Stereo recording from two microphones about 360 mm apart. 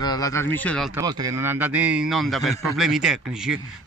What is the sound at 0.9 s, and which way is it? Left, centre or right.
A man's voice, centre.